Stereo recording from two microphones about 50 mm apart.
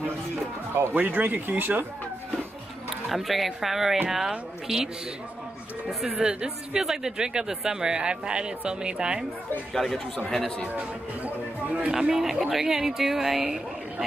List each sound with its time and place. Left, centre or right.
0.9 s speech: right
3.1 s speech: centre
5.9 s speech: centre
6.1 s speech: centre
9.8 s speech: centre
10.8 s speech: right
12.0 s speech: centre